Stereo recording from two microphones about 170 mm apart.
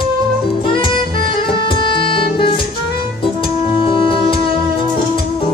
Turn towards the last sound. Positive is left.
turn(degrees=30)  # may be behind; listen again after turning